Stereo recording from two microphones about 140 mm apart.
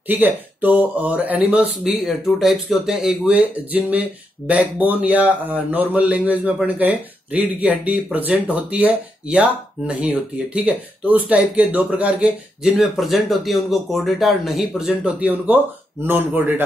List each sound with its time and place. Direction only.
0.1 s a man's voice: 15° right (ahead or behind)